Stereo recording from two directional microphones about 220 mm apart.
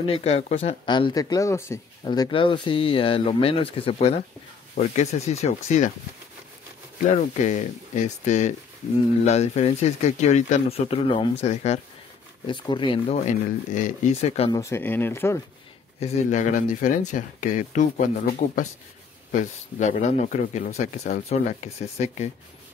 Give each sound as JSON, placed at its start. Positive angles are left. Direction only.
{"t": 0.0, "sound": "speech", "side_deg": 25}
{"t": 7.2, "sound": "speech", "side_deg": 30}
{"t": 14.5, "sound": "speech", "side_deg": 10}
{"t": 16.0, "sound": "speech", "side_deg": 30}